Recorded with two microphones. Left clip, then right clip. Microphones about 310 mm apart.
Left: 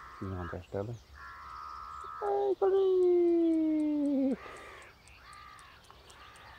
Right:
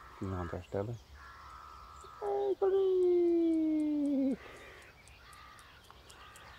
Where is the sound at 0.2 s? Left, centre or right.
Centre.